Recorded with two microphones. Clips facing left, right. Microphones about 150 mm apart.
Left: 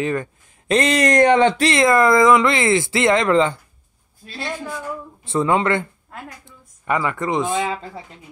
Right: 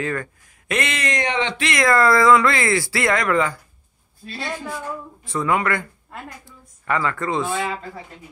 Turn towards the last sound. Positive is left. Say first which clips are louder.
# left 2 dB
turn(degrees=20)  # may be behind; listen again after turning